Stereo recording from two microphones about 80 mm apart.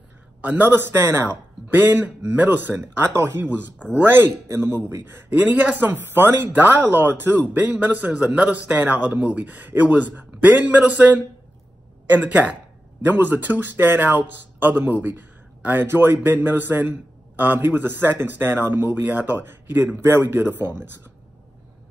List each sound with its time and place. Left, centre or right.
0.4 s speech: right